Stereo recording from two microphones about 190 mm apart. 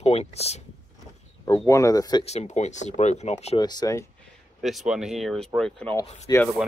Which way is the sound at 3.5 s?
20° left (ahead or behind).